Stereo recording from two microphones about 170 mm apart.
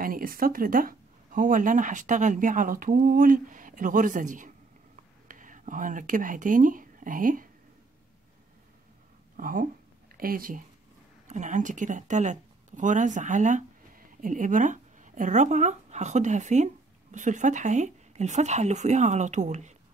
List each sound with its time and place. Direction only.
0.0 s speech: 55° right (ahead or behind)
9.4 s speech: 55° right (ahead or behind)
11.2 s speech: 45° right (ahead or behind)